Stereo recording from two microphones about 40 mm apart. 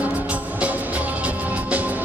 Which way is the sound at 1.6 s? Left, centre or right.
Right.